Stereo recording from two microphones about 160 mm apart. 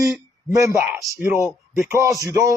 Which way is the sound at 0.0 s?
20° right (ahead or behind).